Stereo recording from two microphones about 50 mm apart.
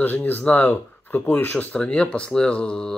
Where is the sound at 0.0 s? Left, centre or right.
Left.